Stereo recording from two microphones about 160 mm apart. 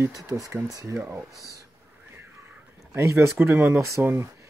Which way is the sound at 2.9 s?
15° right (ahead or behind).